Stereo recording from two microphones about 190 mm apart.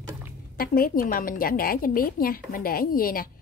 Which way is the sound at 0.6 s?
50° left (ahead or behind).